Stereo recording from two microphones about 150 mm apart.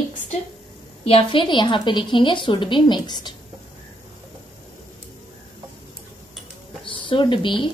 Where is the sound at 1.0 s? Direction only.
40° left (ahead or behind).